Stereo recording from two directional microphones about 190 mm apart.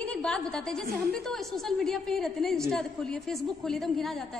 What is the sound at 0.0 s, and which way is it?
A woman's voice, 5° left (ahead or behind).